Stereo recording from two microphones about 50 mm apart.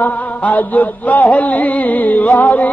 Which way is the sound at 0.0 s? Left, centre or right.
Left.